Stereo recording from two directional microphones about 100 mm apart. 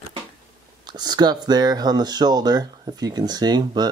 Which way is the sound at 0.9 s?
45° right (ahead or behind).